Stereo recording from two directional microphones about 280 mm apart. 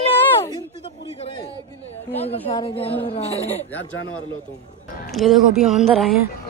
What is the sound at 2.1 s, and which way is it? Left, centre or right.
Speech, centre.